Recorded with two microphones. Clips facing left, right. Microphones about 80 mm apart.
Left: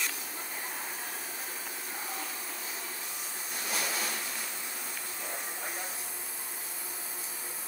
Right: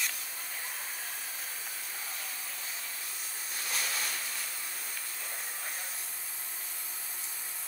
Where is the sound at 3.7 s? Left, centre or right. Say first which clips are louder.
Left 3 dB; centre.